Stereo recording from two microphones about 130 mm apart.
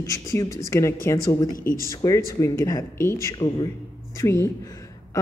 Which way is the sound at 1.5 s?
90° left.